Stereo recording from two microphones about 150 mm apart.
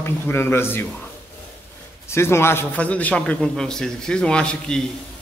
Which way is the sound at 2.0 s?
15° left (ahead or behind).